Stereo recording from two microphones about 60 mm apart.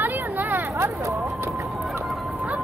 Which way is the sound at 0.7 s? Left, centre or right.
Right.